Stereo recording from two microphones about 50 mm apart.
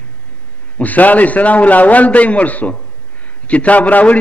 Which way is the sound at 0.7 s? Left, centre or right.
Left.